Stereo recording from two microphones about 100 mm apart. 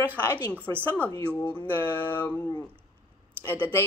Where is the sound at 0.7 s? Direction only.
20° right (ahead or behind).